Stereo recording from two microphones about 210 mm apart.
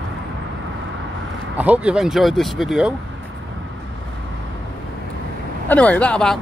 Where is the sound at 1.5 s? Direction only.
5° right (ahead or behind).